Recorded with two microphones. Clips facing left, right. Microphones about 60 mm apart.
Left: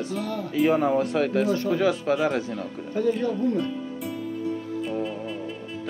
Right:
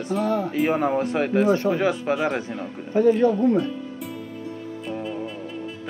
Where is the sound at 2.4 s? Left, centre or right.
Right.